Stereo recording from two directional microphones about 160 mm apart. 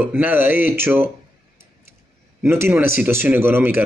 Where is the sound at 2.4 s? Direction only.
15° right (ahead or behind).